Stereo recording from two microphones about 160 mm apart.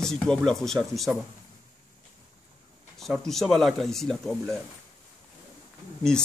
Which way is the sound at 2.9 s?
Centre (ahead or behind).